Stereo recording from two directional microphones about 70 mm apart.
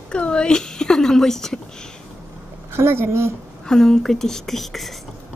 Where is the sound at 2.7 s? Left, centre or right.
Right.